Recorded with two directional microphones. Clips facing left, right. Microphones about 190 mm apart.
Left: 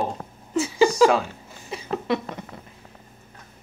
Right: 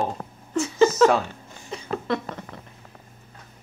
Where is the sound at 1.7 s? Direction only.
15° left (ahead or behind).